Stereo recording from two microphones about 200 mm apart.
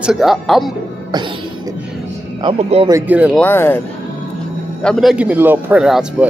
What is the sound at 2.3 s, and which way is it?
Speech, 25° right (ahead or behind).